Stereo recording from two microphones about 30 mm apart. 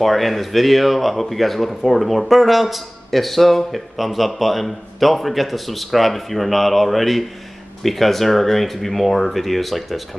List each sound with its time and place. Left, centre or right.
0.0 s speech: centre